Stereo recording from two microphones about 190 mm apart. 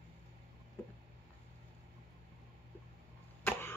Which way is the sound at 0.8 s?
15° left (ahead or behind).